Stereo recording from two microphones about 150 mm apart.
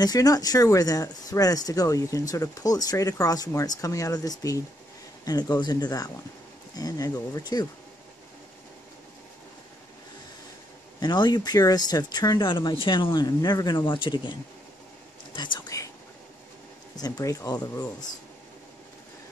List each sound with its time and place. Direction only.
0.0 s speech: 25° left (ahead or behind)
11.0 s speech: 30° left (ahead or behind)
15.3 s whispering: 30° left (ahead or behind)
16.9 s speech: 25° left (ahead or behind)